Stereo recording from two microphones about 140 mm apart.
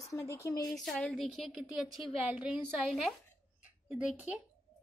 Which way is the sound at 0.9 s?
Centre (ahead or behind).